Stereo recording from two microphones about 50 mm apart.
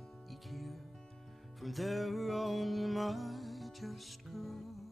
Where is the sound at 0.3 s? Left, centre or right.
Centre.